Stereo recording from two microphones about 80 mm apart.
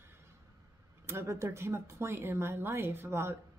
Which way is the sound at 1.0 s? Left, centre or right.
Right.